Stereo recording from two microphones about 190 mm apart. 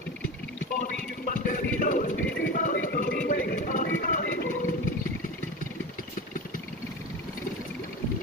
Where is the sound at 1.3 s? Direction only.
45° left (ahead or behind).